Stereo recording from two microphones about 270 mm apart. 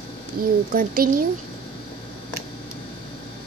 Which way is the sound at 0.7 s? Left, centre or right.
Right.